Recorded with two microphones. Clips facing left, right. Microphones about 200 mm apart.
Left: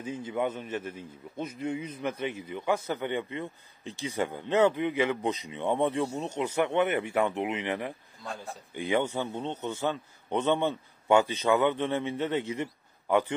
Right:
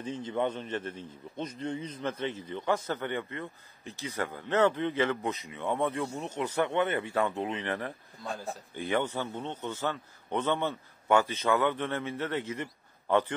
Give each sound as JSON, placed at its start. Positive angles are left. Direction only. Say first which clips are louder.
{"t": 0.0, "sound": "a man's voice", "louder": "even", "side_deg": 10}